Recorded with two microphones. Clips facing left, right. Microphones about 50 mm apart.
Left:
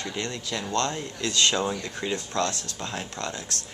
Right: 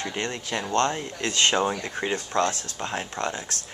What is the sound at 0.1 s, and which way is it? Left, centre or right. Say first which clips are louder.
Speech: right 2 dB; right.